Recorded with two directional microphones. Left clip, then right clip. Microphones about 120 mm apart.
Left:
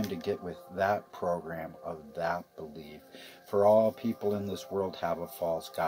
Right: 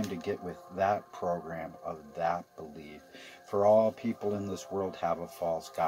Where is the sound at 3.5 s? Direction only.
25° left (ahead or behind).